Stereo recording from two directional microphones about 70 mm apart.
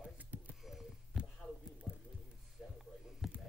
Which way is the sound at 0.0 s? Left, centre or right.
Right.